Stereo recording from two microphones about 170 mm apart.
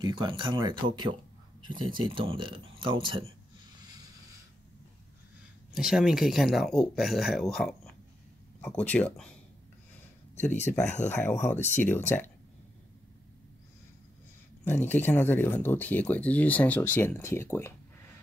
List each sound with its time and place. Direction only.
0.0 s speech: 30° right (ahead or behind)
5.8 s speech: 5° right (ahead or behind)
10.3 s speech: 45° left (ahead or behind)
11.2 s speech: 15° left (ahead or behind)
14.6 s speech: 10° left (ahead or behind)